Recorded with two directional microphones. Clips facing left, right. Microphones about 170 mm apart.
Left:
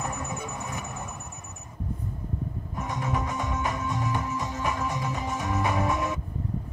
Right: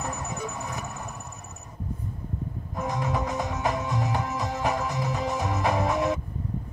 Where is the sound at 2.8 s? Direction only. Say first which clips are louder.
Right 2 dB; 35° right (ahead or behind).